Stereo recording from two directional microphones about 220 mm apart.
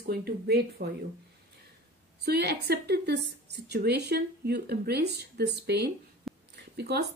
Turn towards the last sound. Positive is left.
turn(degrees=-50)  # may be behind; listen again after turning